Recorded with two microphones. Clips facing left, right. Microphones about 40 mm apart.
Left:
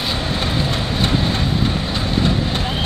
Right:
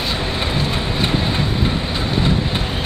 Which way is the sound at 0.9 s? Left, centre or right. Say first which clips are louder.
Left 1 dB; centre.